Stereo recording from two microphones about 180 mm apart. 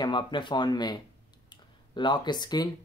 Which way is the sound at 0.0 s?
25° left (ahead or behind).